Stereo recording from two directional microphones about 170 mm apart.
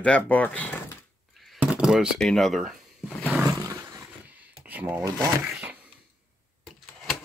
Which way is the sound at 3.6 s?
20° right (ahead or behind).